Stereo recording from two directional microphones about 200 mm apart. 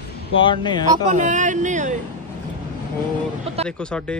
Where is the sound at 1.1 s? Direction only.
40° right (ahead or behind).